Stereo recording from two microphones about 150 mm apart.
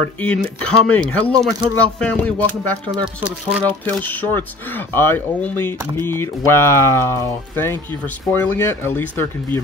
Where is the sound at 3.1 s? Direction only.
10° right (ahead or behind).